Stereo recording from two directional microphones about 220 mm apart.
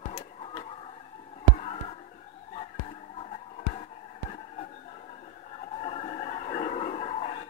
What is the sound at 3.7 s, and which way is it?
Music, 30° left (ahead or behind).